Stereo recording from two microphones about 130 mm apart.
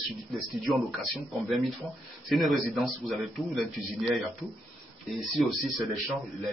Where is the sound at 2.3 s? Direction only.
Centre (ahead or behind).